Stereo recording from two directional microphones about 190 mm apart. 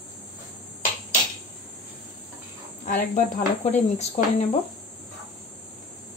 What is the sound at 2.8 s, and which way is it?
Speech, 45° left (ahead or behind).